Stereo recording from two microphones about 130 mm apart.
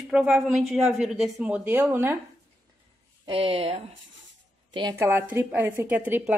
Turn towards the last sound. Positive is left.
turn(degrees=-15)  # may be behind; listen again after turning